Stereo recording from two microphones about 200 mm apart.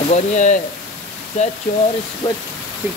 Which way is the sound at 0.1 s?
35° left (ahead or behind).